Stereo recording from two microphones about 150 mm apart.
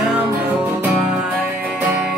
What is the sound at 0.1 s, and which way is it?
Music, 10° right (ahead or behind).